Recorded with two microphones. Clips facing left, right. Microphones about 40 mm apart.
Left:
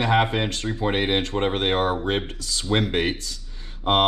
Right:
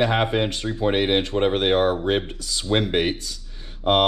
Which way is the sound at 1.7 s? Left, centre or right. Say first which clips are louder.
Right 3 dB; centre.